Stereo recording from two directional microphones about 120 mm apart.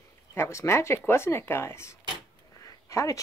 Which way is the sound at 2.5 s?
25° left (ahead or behind).